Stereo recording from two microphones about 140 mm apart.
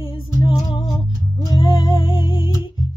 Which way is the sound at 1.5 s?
35° left (ahead or behind).